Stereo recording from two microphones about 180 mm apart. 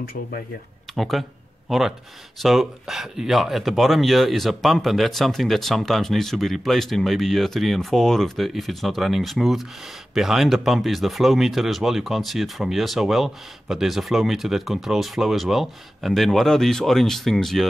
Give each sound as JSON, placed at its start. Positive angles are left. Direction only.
{"t": 0.0, "sound": "speech", "side_deg": 55}
{"t": 0.9, "sound": "speech", "side_deg": 0}